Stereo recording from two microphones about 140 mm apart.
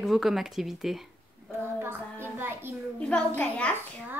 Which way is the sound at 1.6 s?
15° right (ahead or behind).